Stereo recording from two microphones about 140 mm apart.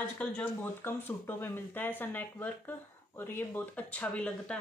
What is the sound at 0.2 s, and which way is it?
Speech, 10° left (ahead or behind).